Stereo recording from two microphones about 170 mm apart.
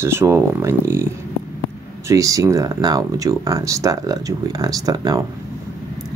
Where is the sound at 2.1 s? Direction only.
20° right (ahead or behind).